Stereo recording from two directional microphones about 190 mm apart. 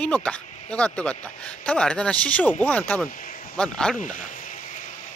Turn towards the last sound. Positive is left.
turn(degrees=40)  # may be behind; listen again after turning